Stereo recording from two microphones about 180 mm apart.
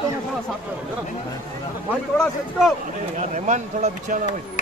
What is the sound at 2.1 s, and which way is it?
Speech, centre (ahead or behind).